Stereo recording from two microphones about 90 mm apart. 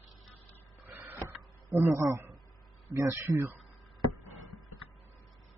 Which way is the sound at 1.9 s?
30° right (ahead or behind).